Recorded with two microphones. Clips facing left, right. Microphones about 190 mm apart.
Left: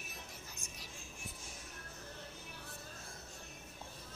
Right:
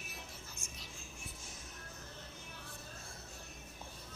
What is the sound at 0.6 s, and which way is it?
Music, 35° left (ahead or behind).